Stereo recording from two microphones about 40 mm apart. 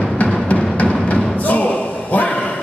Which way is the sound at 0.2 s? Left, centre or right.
Left.